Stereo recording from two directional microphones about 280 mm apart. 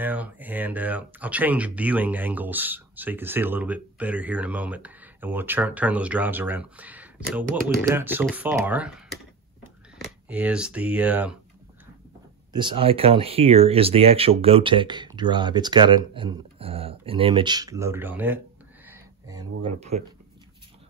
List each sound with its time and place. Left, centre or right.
0.0 s speech: centre
9.9 s speech: centre
12.5 s speech: centre
19.6 s speech: right